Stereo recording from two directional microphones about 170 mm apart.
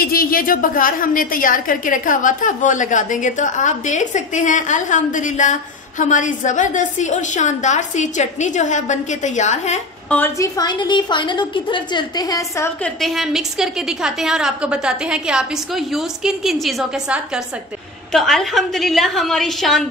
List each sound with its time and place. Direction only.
0.0 s a woman's voice: 60° left (ahead or behind)
10.0 s a woman's voice: 10° left (ahead or behind)
13.0 s a woman's voice: centre (ahead or behind)